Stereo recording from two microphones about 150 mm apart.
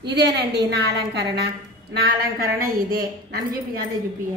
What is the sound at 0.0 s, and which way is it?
A woman's voice, 90° right.